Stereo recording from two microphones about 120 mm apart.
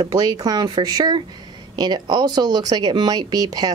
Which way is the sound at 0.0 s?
35° right (ahead or behind).